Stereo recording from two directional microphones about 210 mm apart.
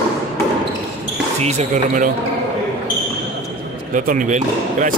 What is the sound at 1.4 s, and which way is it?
Speech, 30° right (ahead or behind).